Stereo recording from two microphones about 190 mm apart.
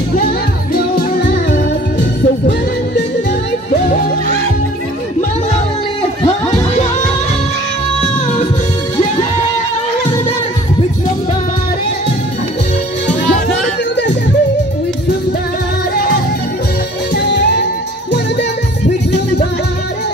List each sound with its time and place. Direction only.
1.5 s music: 50° left (ahead or behind)
6.2 s music: 35° left (ahead or behind)
17.1 s music: 60° left (ahead or behind)